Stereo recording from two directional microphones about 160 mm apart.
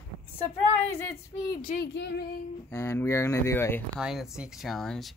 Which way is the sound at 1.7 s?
80° left.